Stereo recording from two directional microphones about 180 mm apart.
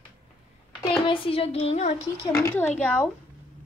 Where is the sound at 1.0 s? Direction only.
30° left (ahead or behind).